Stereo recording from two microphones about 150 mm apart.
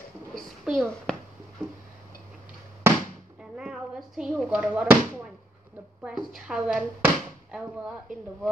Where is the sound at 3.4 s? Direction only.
5° right (ahead or behind).